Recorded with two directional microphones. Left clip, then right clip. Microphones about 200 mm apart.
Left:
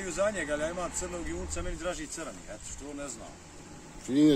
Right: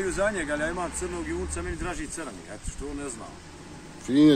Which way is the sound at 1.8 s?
60° left (ahead or behind).